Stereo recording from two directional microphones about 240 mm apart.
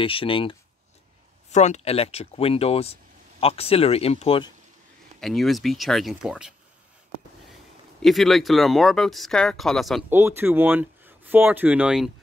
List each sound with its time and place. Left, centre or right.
0.0 s speech: left
5.2 s speech: centre
8.0 s speech: centre